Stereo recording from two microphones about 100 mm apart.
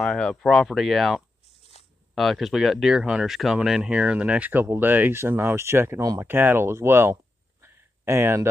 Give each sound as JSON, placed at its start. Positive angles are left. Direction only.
{"t": 0.0, "sound": "speech", "side_deg": 5}
{"t": 2.1, "sound": "speech", "side_deg": 0}
{"t": 7.6, "sound": "a sound", "side_deg": -25}